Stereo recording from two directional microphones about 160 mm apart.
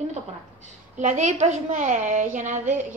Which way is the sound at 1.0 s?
45° right (ahead or behind).